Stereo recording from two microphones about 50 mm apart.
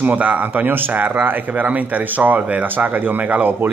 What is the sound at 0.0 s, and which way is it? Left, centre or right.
Speech, right.